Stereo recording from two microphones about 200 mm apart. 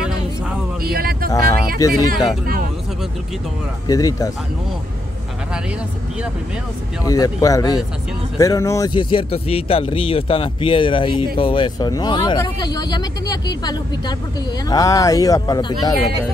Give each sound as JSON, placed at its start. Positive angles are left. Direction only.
{"t": 0.9, "sound": "vehicle", "side_deg": -45}
{"t": 2.0, "sound": "speech", "side_deg": 0}
{"t": 3.8, "sound": "speech", "side_deg": 20}
{"t": 7.1, "sound": "speech", "side_deg": 15}